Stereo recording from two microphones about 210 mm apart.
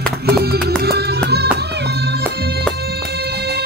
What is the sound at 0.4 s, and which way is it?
Music, 50° right (ahead or behind).